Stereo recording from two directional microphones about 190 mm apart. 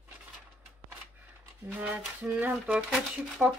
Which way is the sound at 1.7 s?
5° right (ahead or behind).